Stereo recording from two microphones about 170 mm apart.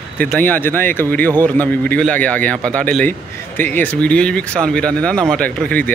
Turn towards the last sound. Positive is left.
turn(degrees=10)  # may be behind; listen again after turning